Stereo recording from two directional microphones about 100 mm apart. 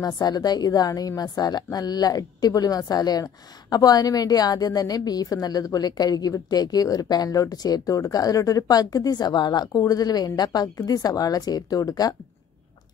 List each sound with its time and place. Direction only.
0.0 s a woman's voice: 40° left (ahead or behind)